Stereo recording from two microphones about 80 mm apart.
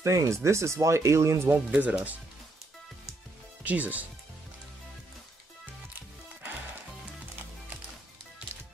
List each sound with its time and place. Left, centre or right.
0.0 s speech: right
1.7 s speech: centre
3.6 s speech: centre
8.5 s music: right